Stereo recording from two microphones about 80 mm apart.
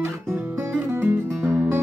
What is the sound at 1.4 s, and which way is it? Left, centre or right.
Music, right.